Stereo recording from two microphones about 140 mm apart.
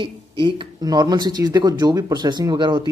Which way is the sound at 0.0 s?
35° right (ahead or behind).